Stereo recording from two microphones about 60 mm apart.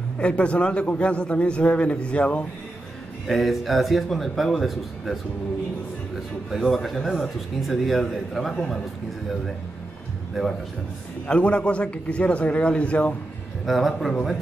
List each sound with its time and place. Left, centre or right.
0.2 s a man's voice: centre
3.3 s speech: centre
6.5 s speech: centre
10.4 s speech: centre
11.2 s a man's voice: centre
13.7 s speech: centre